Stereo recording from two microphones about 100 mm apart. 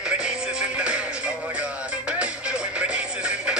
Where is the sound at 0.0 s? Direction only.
10° right (ahead or behind).